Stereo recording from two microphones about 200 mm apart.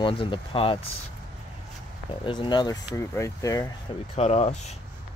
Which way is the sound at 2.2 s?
25° left (ahead or behind).